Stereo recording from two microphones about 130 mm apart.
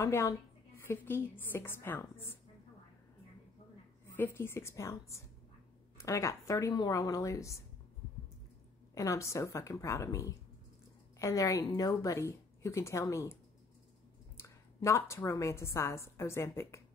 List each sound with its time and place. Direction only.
0.0 s a woman's voice: 25° left (ahead or behind)
4.1 s a woman's voice: 15° left (ahead or behind)
8.9 s a woman's voice: 25° left (ahead or behind)